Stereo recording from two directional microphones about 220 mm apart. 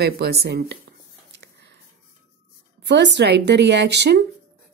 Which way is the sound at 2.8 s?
50° right (ahead or behind).